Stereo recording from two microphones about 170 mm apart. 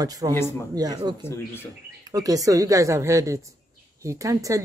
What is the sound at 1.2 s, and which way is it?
Speech, 15° left (ahead or behind).